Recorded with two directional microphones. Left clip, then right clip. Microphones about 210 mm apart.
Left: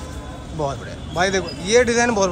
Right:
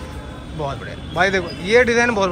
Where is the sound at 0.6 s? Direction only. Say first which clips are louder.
Left 1 dB; 15° left (ahead or behind).